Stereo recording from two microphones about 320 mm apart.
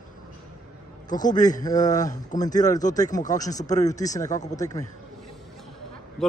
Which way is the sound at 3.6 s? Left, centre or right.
Left.